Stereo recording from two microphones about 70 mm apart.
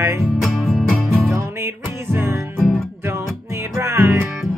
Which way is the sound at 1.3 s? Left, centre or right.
Right.